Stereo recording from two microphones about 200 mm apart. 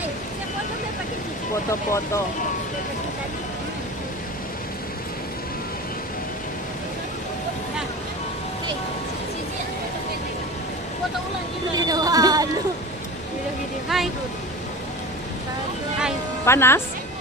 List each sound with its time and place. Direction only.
1.7 s speech: 15° left (ahead or behind)
11.7 s a sound: 20° right (ahead or behind)
13.9 s speech: centre (ahead or behind)
16.4 s speech: 10° left (ahead or behind)